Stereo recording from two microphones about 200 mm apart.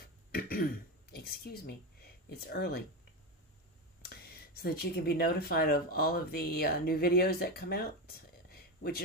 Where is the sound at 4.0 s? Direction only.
50° left (ahead or behind).